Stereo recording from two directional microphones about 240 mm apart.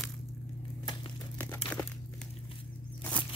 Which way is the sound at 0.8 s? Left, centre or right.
Centre.